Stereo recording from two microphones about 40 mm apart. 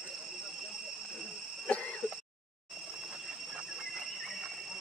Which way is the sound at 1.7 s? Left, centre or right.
Left.